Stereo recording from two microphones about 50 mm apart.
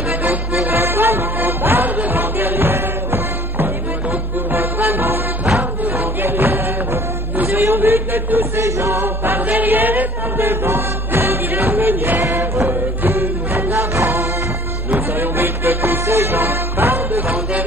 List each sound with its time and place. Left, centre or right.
0.2 s music: right
7.5 s a sound: right
8.5 s music: right
9.0 s music: right
13.0 s music: right
14.9 s music: right